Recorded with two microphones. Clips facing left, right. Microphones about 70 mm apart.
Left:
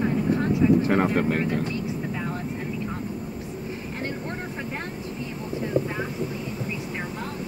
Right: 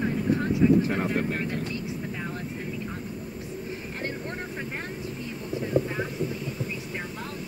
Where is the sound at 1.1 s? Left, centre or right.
Left.